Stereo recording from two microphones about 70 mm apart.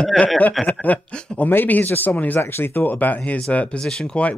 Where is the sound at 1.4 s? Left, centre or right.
Left.